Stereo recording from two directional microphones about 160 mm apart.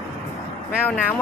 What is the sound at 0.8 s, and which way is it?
Speech, 10° left (ahead or behind).